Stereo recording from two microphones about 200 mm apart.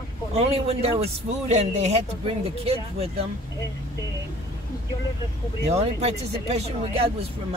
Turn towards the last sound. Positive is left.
turn(degrees=-30)  # may be behind; listen again after turning